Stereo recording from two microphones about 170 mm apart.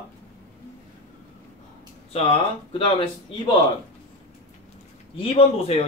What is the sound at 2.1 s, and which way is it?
Speech, 35° left (ahead or behind).